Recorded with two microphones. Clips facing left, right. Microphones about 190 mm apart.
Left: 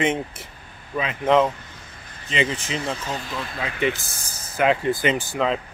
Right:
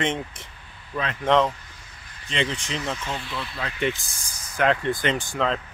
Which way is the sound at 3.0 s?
40° left (ahead or behind).